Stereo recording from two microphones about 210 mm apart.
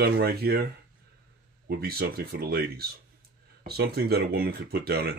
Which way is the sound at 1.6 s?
45° right (ahead or behind).